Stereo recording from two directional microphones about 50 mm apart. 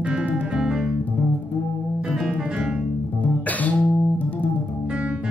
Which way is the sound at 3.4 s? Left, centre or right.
Left.